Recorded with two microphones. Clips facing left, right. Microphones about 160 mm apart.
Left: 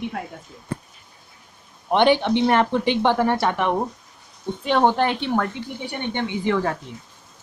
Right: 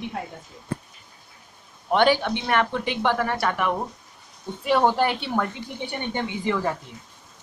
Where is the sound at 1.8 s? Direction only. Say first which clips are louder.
Left 2 dB; 20° left (ahead or behind).